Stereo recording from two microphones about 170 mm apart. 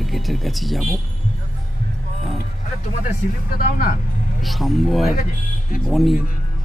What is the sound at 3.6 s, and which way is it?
Speech, 55° left (ahead or behind).